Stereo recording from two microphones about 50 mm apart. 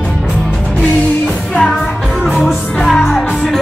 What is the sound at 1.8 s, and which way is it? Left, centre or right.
Music, centre.